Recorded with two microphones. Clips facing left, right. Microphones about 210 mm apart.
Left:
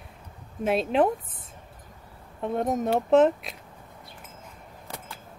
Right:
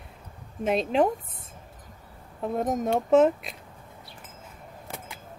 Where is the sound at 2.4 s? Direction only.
Centre (ahead or behind).